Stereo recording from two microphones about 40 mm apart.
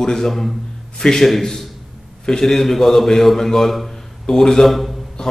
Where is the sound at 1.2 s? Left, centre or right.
Centre.